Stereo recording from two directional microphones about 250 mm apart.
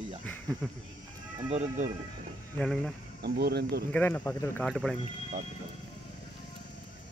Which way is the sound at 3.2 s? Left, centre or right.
Right.